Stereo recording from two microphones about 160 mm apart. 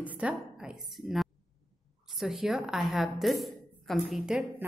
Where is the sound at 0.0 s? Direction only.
10° right (ahead or behind).